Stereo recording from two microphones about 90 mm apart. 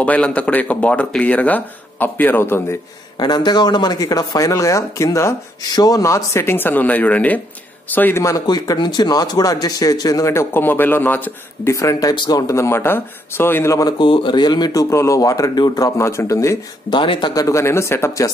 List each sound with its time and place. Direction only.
0.0 s speech: 15° left (ahead or behind)
3.2 s speech: 50° left (ahead or behind); by 8.2 s 20° left (ahead or behind)
8.5 s speech: 50° left (ahead or behind); by 11.7 s 20° left (ahead or behind)
11.7 s speech: 35° left (ahead or behind)
13.9 s speech: 70° left (ahead or behind); by 15.9 s 50° left (ahead or behind)
16.0 s speech: 30° left (ahead or behind)
16.9 s speech: 65° left (ahead or behind)
17.3 s speech: 40° left (ahead or behind)